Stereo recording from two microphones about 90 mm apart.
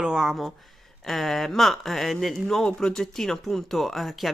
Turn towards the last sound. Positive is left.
turn(degrees=0)  # may be behind; listen again after turning